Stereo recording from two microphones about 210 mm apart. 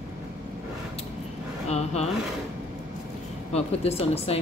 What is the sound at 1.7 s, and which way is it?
Speech, 30° left (ahead or behind).